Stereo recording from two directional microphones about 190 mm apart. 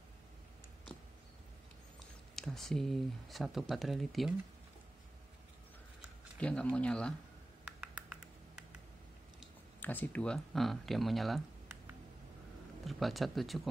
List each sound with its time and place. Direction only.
2.0 s speech: centre (ahead or behind)
6.3 s speech: 5° left (ahead or behind)
9.8 s speech: 10° left (ahead or behind)
12.8 s speech: centre (ahead or behind)